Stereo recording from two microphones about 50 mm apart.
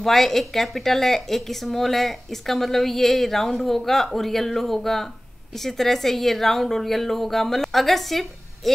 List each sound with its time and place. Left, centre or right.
0.0 s a woman's voice: centre